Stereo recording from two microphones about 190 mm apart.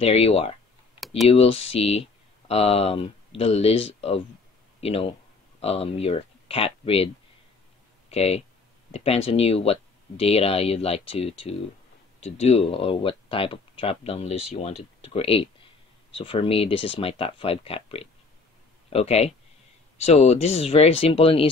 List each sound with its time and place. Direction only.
0.0 s speech: 30° left (ahead or behind)
1.0 s computer keyboard: centre (ahead or behind)
1.3 s speech: 30° left (ahead or behind)
8.1 s speech: 35° left (ahead or behind)